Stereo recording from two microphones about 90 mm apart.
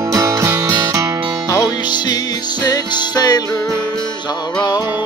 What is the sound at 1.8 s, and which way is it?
Music, 50° left (ahead or behind).